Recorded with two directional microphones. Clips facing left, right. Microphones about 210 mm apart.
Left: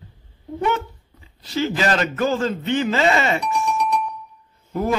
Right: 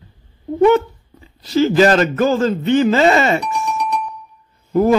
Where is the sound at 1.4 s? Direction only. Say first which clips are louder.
Right 9 dB; 40° right (ahead or behind).